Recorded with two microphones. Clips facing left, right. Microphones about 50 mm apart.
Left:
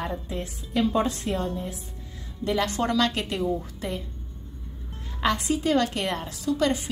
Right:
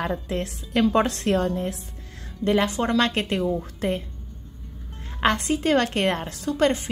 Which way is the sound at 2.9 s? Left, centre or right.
Right.